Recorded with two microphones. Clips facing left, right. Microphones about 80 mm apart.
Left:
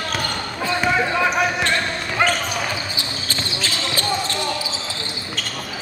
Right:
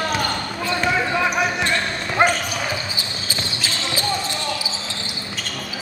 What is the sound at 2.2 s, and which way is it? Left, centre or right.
Basketball bounce, right.